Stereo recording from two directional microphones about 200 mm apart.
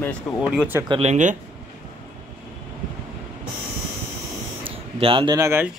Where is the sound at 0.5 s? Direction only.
10° right (ahead or behind).